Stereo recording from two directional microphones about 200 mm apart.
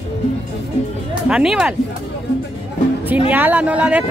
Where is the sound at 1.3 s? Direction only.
5° right (ahead or behind).